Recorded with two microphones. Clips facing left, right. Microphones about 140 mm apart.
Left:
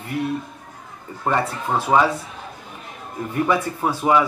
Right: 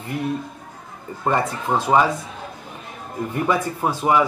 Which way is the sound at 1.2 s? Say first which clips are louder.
Right 1 dB; 15° right (ahead or behind).